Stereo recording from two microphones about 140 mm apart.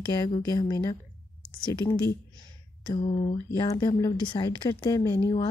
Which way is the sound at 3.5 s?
30° left (ahead or behind).